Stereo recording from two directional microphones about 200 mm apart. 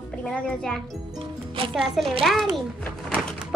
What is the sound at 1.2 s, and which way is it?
Speech, 25° right (ahead or behind).